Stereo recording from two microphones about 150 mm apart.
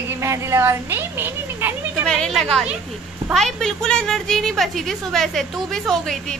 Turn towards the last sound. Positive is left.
turn(degrees=0)  # may be behind; listen again after turning